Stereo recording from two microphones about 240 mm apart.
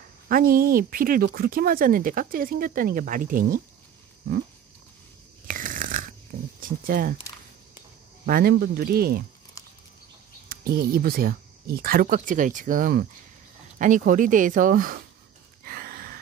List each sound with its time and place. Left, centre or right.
0.3 s speech: right
5.5 s a sound: right
6.6 s speech: right
8.3 s speech: right
10.5 s speech: right
15.6 s sigh: right